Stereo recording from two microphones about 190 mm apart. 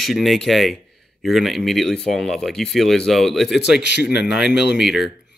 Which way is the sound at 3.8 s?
65° left (ahead or behind).